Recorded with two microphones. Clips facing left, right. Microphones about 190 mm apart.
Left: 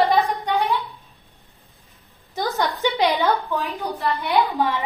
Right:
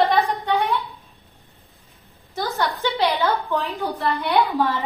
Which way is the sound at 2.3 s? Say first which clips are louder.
Left 1 dB; 15° left (ahead or behind).